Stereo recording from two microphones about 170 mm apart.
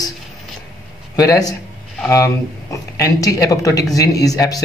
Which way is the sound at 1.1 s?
20° left (ahead or behind).